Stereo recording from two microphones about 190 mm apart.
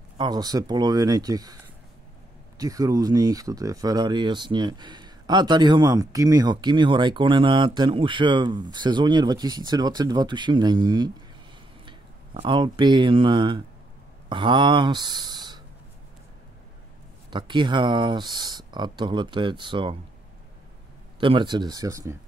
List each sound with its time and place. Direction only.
0.2 s speech: 20° right (ahead or behind)
12.4 s speech: 25° right (ahead or behind)
17.3 s speech: 25° right (ahead or behind)
21.2 s speech: 25° right (ahead or behind)